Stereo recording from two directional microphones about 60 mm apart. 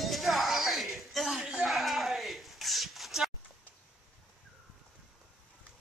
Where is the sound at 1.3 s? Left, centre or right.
Centre.